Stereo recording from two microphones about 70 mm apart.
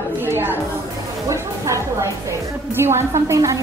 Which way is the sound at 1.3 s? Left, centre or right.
Right.